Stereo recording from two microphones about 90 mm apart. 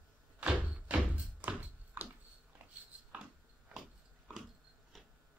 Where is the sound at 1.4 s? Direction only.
20° right (ahead or behind).